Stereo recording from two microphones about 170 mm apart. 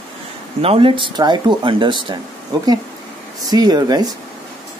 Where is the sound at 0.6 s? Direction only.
35° right (ahead or behind).